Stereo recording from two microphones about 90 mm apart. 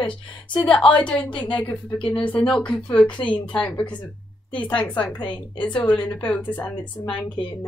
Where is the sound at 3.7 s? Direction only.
60° left (ahead or behind).